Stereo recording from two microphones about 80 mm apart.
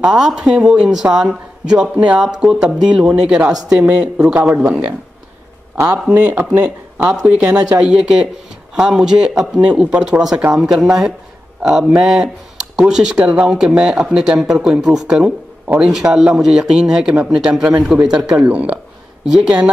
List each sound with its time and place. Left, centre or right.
0.0 s speech: centre
17.1 s speech: centre